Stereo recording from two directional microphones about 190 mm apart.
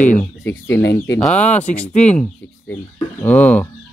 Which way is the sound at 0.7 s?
65° left (ahead or behind).